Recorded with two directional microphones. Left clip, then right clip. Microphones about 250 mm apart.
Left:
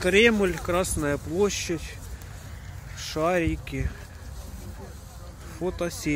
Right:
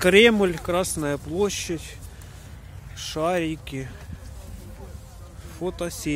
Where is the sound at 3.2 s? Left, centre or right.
Centre.